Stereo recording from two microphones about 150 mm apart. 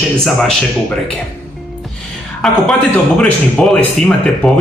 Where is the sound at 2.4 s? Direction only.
5° left (ahead or behind).